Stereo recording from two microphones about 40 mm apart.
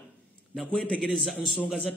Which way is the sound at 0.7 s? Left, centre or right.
Centre.